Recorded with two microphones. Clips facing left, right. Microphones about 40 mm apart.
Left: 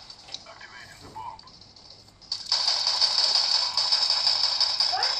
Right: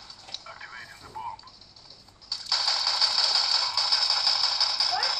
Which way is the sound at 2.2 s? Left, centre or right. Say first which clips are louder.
Even; centre.